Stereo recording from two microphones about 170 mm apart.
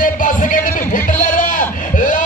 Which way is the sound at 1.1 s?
50° left (ahead or behind).